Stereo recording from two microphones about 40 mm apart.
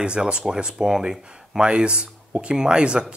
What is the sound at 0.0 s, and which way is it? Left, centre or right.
Speech, right.